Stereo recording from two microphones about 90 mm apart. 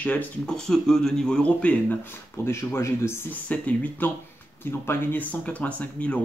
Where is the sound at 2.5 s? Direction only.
30° left (ahead or behind).